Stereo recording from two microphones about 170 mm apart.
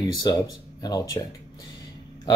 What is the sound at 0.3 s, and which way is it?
Speech, 25° left (ahead or behind).